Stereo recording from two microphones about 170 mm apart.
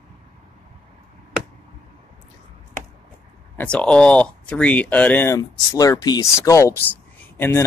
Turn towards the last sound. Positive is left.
turn(degrees=10)  # may be behind; listen again after turning